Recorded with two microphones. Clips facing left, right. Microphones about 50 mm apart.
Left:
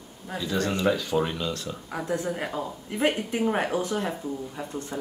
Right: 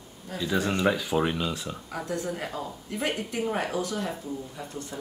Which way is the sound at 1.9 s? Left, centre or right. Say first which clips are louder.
Left 3 dB; centre.